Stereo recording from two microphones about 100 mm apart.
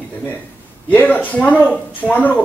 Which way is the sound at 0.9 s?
15° left (ahead or behind).